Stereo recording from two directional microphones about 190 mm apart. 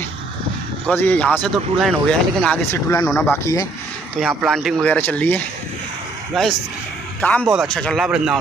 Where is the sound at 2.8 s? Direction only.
20° left (ahead or behind).